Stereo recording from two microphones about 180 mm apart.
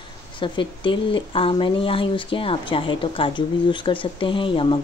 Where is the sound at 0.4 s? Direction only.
30° left (ahead or behind).